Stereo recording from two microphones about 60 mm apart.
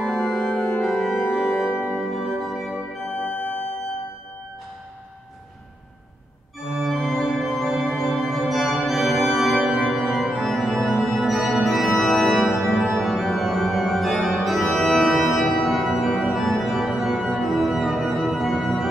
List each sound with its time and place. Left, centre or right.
0.0 s organ: centre
2.0 s music: centre
3.2 s organ: centre
6.6 s organ: centre